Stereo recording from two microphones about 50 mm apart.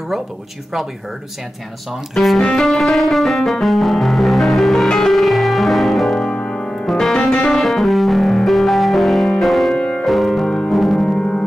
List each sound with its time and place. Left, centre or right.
2.1 s music: centre
6.2 s music: centre
6.9 s music: centre
9.8 s piano: centre
10.0 s music: centre